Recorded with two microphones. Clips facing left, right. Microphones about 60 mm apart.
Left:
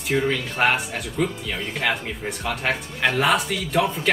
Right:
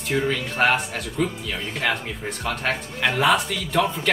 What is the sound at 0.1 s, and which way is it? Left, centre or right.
Speech, centre.